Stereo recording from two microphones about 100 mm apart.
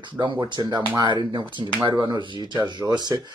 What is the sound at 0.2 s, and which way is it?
Speech, 50° right (ahead or behind).